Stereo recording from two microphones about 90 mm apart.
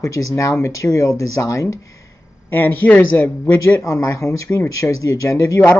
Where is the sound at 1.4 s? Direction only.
40° left (ahead or behind).